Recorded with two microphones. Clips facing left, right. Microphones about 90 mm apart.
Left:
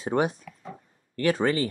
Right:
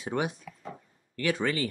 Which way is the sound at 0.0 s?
35° left (ahead or behind).